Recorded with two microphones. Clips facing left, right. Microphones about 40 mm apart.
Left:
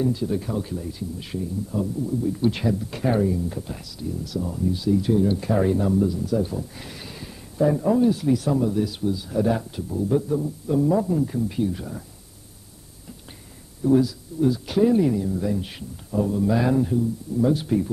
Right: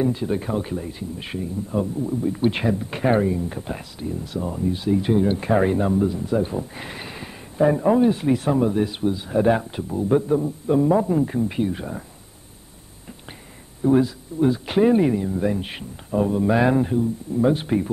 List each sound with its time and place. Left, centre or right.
0.0 s speech: right
13.8 s speech: right